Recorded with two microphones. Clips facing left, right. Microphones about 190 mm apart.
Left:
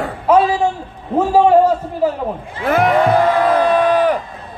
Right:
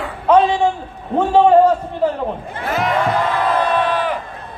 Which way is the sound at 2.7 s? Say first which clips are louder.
Left 5 dB; 55° left (ahead or behind).